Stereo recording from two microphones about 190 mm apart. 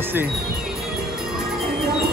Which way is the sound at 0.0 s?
10° right (ahead or behind).